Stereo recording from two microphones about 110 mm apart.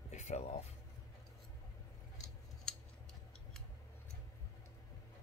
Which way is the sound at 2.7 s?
5° left (ahead or behind).